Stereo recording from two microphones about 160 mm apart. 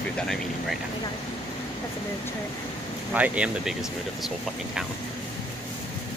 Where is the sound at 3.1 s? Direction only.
10° right (ahead or behind).